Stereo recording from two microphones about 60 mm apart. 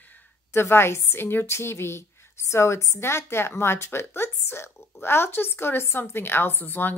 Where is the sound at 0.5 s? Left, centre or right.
Left.